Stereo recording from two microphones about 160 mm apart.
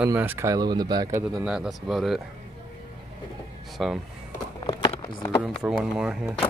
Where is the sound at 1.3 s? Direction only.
5° right (ahead or behind).